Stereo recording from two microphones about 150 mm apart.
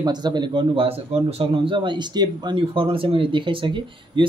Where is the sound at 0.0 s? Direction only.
30° right (ahead or behind).